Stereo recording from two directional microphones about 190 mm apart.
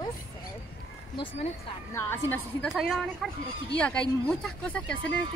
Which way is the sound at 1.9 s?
10° left (ahead or behind).